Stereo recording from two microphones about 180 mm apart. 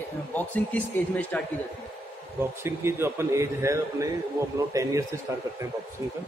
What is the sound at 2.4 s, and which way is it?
A man's voice, 15° right (ahead or behind).